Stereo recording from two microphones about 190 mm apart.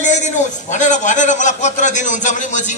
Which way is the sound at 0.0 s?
40° left (ahead or behind).